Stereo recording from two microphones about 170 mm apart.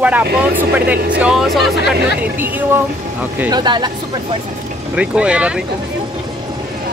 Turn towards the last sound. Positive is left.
turn(degrees=-5)  # may be behind; listen again after turning